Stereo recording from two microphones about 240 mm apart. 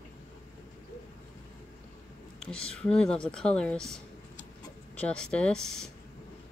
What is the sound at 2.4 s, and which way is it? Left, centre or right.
Speech, centre.